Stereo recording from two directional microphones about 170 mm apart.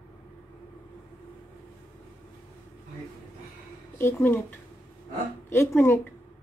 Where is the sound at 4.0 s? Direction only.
15° left (ahead or behind).